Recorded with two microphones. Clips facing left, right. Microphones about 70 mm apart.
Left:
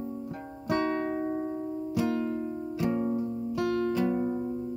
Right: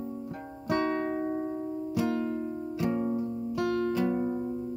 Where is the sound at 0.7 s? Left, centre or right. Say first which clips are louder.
Even; centre.